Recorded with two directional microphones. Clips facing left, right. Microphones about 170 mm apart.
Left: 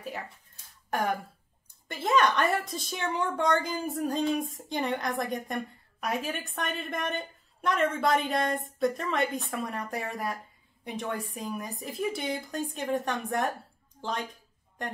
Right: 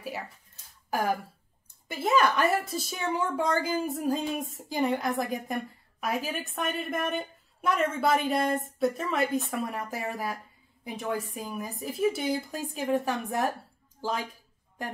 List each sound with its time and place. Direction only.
0.8 s a woman's voice: 5° right (ahead or behind)